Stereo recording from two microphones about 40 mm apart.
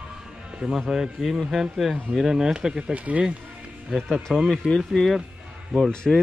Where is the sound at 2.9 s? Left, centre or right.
Right.